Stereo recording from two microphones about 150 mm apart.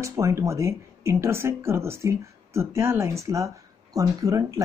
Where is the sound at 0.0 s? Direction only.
20° right (ahead or behind).